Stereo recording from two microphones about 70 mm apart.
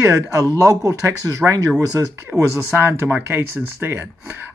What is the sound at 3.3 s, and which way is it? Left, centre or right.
Speech, right.